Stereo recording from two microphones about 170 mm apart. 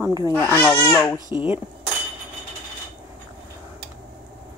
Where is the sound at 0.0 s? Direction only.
20° right (ahead or behind).